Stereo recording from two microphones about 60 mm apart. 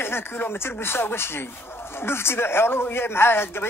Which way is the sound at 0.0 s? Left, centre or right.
Left.